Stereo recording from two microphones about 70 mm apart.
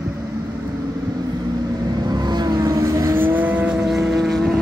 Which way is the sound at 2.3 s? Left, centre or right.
Right.